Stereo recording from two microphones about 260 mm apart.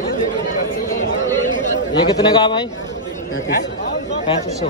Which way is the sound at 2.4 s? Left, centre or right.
Centre.